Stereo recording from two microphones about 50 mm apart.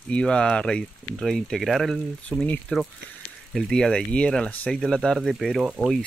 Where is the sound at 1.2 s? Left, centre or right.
Centre.